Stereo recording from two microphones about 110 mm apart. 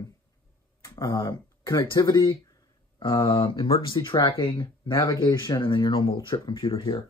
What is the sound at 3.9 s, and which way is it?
Speech, 30° left (ahead or behind).